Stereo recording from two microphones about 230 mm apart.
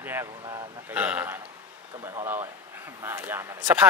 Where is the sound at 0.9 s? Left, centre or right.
Centre.